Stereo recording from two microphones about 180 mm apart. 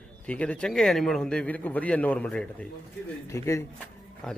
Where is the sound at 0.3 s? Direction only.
5° left (ahead or behind).